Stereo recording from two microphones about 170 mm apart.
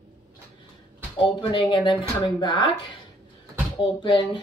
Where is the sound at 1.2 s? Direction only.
30° left (ahead or behind).